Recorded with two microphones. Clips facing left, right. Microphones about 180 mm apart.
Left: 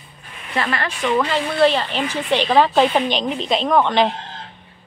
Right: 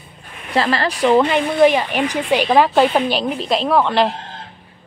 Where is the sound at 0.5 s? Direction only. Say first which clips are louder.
Right 5 dB; 35° right (ahead or behind).